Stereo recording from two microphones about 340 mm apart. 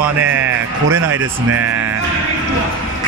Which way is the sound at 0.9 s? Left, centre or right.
Right.